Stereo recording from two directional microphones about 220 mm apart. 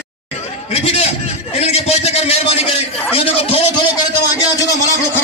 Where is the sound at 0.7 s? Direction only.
25° left (ahead or behind).